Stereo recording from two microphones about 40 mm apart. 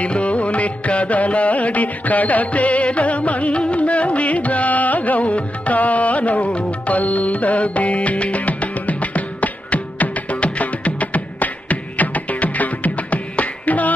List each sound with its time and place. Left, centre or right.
0.0 s music: left